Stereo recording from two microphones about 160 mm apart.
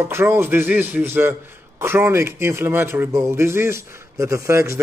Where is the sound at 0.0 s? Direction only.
15° right (ahead or behind).